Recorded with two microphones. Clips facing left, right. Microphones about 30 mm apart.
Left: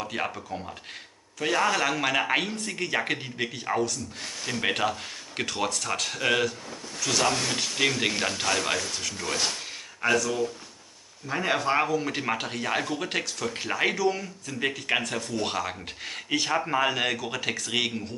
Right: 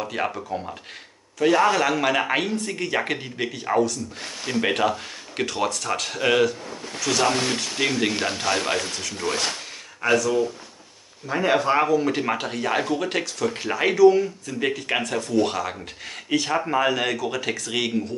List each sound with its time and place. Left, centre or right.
0.0 s speech: centre
0.3 s speech: centre
1.4 s speech: centre
10.0 s speech: centre